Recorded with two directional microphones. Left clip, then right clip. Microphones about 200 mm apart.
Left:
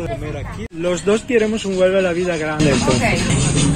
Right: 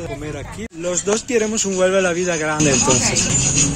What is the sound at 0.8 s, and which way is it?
Speech, 15° right (ahead or behind).